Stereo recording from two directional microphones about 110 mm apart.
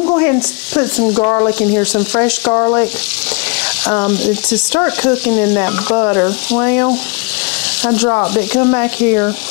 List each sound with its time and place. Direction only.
0.2 s speech: 20° left (ahead or behind)
1.2 s speech: 30° left (ahead or behind)
1.6 s speech: 20° left (ahead or behind)
2.5 s speech: 30° left (ahead or behind)
3.8 s speech: 20° left (ahead or behind)